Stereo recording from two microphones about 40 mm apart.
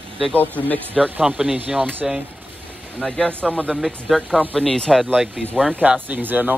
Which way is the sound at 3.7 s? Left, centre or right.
Centre.